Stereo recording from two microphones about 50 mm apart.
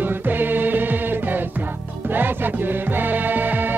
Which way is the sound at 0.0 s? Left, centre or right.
Right.